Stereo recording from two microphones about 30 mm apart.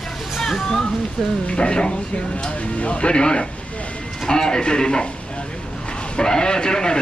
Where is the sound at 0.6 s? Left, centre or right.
Centre.